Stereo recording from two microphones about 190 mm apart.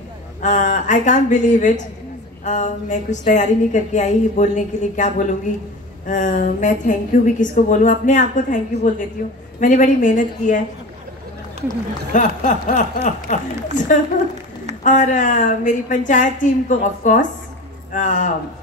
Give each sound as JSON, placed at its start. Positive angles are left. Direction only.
{"t": 0.4, "sound": "a woman's voice", "side_deg": 40}
{"t": 12.1, "sound": "a woman's voice", "side_deg": 45}
{"t": 14.8, "sound": "a woman's voice", "side_deg": 40}